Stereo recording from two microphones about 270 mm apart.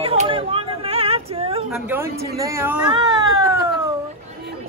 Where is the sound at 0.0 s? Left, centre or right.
Right.